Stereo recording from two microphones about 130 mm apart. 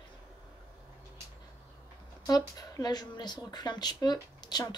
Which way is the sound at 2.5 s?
30° left (ahead or behind).